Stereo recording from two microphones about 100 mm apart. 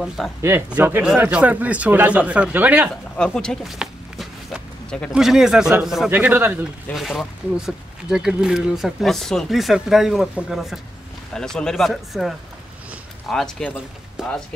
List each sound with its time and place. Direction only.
0.4 s speech: 25° right (ahead or behind)
3.3 s speech: 5° left (ahead or behind)
3.7 s a sound: 5° right (ahead or behind)
5.1 s speech: 5° right (ahead or behind)
6.0 s speech: 15° right (ahead or behind)
6.9 s speech: centre (ahead or behind)
14.2 s speech: 5° right (ahead or behind)